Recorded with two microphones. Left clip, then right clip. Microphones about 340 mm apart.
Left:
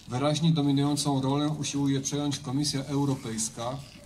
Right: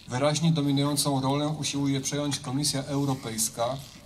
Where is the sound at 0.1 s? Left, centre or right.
Right.